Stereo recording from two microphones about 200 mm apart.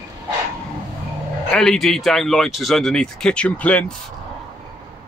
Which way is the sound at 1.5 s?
5° left (ahead or behind).